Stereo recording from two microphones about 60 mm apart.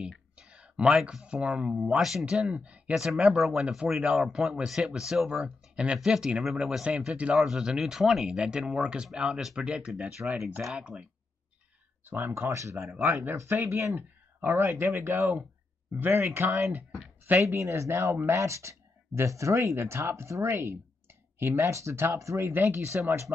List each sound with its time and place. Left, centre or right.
0.4 s a sound: centre
1.2 s speech: centre
2.0 s speech: centre
2.9 s speech: centre
3.6 s speech: centre
8.3 s speech: centre
10.2 s speech: centre
12.0 s speech: right
17.4 s speech: right
18.3 s speech: right
22.5 s speech: right